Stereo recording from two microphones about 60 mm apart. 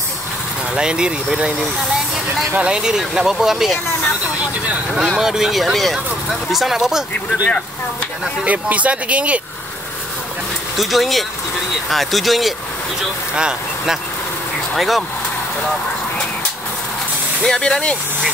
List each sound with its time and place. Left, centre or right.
0.7 s speech: centre
5.1 s speech: centre
8.5 s speech: right
10.8 s speech: centre
13.0 s speech: centre
14.8 s speech: centre
17.4 s speech: centre